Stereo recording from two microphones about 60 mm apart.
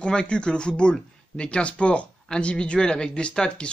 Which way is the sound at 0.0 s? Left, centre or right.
Centre.